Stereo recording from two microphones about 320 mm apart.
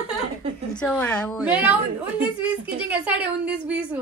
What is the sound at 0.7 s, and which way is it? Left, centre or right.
A woman's voice, centre.